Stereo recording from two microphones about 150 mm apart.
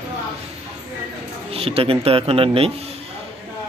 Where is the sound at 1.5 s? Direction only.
40° right (ahead or behind).